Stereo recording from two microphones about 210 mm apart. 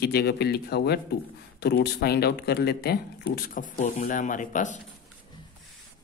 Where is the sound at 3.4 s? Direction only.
40° left (ahead or behind).